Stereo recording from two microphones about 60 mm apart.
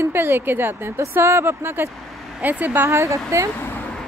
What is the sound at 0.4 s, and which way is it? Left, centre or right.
A woman's voice, right.